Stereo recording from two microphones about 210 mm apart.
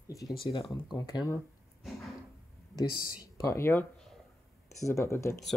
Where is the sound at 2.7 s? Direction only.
15° left (ahead or behind).